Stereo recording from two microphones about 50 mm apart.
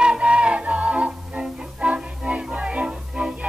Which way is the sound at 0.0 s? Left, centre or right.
Centre.